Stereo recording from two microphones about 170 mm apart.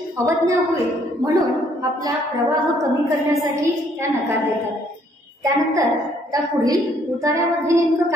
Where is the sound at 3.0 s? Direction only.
20° right (ahead or behind).